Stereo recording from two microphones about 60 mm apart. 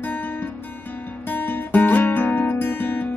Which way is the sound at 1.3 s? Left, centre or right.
Left.